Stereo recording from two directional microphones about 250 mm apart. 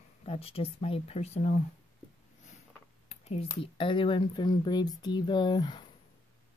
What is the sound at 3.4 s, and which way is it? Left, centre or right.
Speech, centre.